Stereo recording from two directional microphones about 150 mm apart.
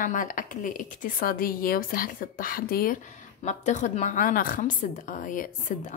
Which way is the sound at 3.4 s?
55° left (ahead or behind).